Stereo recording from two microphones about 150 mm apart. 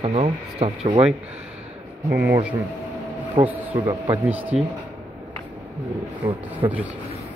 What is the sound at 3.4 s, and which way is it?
Speech, 35° right (ahead or behind).